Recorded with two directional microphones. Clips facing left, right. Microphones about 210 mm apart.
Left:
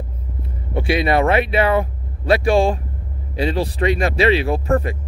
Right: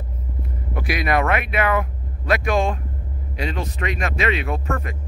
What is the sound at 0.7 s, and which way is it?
Speech, 30° left (ahead or behind).